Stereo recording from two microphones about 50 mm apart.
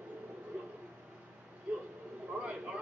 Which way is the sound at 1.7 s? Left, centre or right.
Right.